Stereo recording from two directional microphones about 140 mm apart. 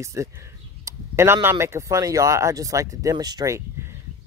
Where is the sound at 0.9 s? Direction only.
20° right (ahead or behind).